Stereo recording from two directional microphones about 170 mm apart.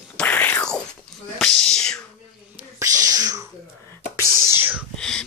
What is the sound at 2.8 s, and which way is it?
Whispering, 20° right (ahead or behind).